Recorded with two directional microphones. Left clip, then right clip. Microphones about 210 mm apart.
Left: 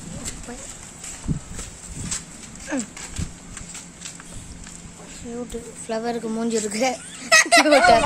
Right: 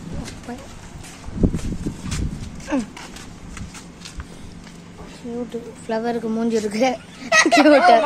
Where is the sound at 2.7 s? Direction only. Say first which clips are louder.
Right 4 dB; centre (ahead or behind).